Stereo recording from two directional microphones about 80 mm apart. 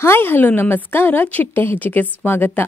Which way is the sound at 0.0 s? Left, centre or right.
Left.